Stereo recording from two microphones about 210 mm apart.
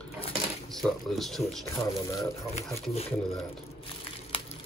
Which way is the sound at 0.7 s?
Centre (ahead or behind).